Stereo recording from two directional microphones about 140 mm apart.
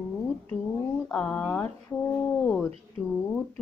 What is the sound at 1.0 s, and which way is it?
Speech, 10° left (ahead or behind).